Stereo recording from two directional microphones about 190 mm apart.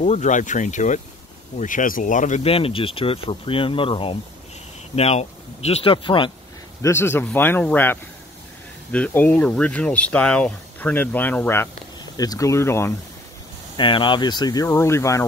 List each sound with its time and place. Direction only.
0.0 s speech: 40° left (ahead or behind)
6.8 s speech: 15° left (ahead or behind)
13.7 s speech: 25° left (ahead or behind)